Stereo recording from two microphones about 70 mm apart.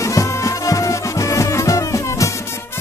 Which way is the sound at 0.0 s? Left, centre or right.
Left.